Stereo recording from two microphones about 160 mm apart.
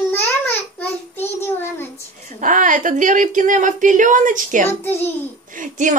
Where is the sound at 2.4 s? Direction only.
55° right (ahead or behind).